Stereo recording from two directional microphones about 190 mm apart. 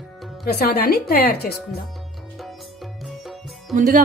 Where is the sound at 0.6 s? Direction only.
55° left (ahead or behind).